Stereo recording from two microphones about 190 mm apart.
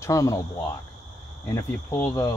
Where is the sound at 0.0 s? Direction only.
15° left (ahead or behind).